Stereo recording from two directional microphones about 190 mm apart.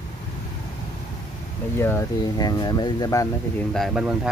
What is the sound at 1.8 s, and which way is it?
Speech, 15° left (ahead or behind).